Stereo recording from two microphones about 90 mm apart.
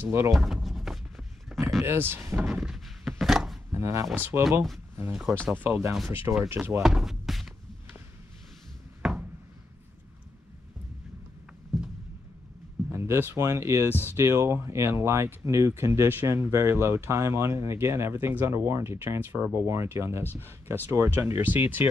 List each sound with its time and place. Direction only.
0.3 s a sound: centre (ahead or behind)
1.8 s speech: 25° right (ahead or behind)
2.5 s thunk: 5° right (ahead or behind)
3.7 s speech: 35° right (ahead or behind)
5.5 s speech: 25° right (ahead or behind)
6.8 s door: 5° right (ahead or behind)
9.0 s a sound: 5° right (ahead or behind)
11.7 s a sound: centre (ahead or behind)
12.9 s speech: 30° right (ahead or behind)